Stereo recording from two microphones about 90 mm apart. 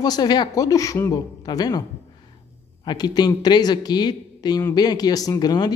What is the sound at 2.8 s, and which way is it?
A man's voice, 50° left (ahead or behind).